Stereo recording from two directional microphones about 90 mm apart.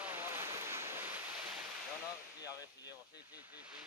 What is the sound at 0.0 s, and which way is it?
Waves, 25° right (ahead or behind).